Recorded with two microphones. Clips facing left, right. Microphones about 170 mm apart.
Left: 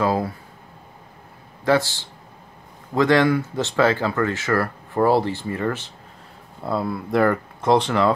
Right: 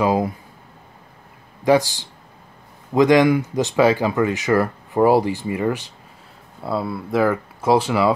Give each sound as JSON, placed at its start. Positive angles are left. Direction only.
{"t": 0.0, "sound": "speech", "side_deg": -15}
{"t": 1.6, "sound": "speech", "side_deg": -15}
{"t": 6.6, "sound": "speech", "side_deg": 0}